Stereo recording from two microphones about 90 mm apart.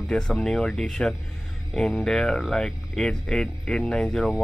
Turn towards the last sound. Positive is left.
turn(degrees=5)  # may be behind; listen again after turning